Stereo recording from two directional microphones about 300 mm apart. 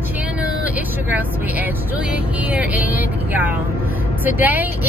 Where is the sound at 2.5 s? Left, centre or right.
Centre.